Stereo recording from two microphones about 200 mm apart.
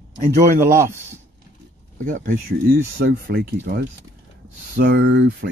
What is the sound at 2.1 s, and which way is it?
Speech, 45° right (ahead or behind).